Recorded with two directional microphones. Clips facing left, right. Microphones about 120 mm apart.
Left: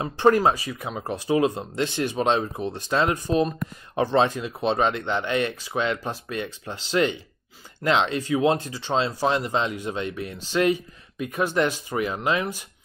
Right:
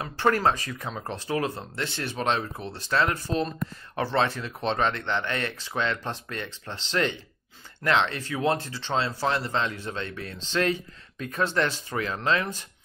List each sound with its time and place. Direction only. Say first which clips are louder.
0.0 s speech: left 5 dB; 20° left (ahead or behind)